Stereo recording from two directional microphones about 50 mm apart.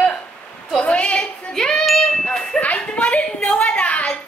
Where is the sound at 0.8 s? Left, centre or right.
Left.